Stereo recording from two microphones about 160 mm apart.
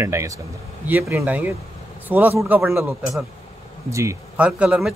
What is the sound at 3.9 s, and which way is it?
Speech, 20° right (ahead or behind).